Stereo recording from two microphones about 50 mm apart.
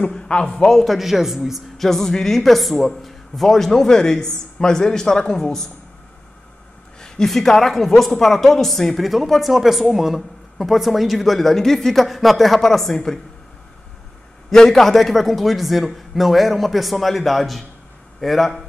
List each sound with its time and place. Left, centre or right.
0.0 s a man's voice: centre
0.7 s a woman's voice: centre
1.9 s speech: centre
7.0 s a woman's voice: centre
14.5 s a woman's voice: centre